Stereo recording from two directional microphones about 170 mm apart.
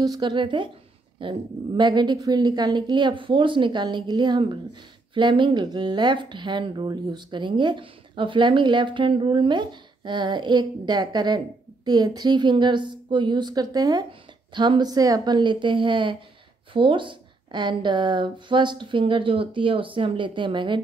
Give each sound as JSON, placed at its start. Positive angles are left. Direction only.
{"t": 0.0, "sound": "speech", "side_deg": -25}